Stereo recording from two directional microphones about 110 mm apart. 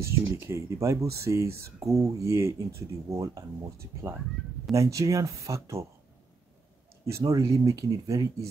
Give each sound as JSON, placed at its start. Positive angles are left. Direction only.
{"t": 0.0, "sound": "speech", "side_deg": -25}
{"t": 4.7, "sound": "speech", "side_deg": -30}
{"t": 7.1, "sound": "speech", "side_deg": -30}